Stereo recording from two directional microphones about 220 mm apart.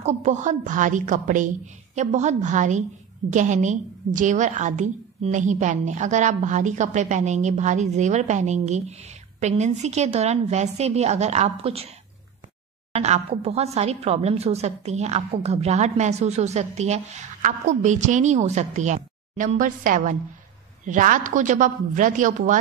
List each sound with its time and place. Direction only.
0.0 s a woman's voice: 30° right (ahead or behind)
12.9 s a woman's voice: 30° right (ahead or behind)